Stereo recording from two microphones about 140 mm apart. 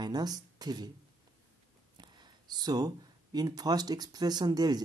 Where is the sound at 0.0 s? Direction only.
30° right (ahead or behind).